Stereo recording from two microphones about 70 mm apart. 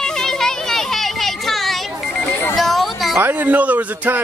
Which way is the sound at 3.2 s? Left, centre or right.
Right.